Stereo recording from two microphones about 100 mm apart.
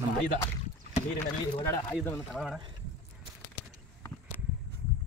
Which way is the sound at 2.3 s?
Centre (ahead or behind).